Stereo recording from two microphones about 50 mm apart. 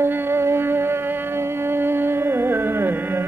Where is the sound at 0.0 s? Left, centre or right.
Right.